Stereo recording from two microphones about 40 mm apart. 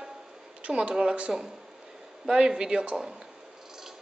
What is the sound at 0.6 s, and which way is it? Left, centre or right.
Speech, right.